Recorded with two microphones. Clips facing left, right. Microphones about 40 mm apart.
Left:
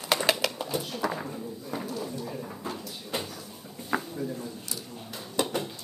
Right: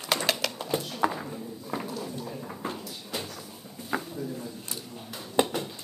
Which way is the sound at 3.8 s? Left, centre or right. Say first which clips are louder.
Left 2 dB; centre.